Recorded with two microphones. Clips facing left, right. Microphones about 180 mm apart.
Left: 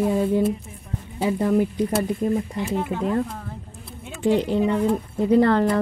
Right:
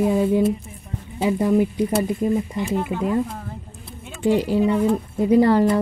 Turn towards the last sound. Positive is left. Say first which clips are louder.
# right 2 dB
turn(degrees=-10)  # may be behind; listen again after turning